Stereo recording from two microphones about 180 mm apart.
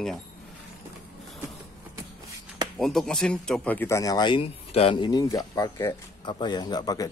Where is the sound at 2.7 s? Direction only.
Centre (ahead or behind).